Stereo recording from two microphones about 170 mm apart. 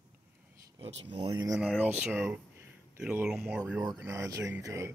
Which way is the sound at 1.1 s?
25° right (ahead or behind).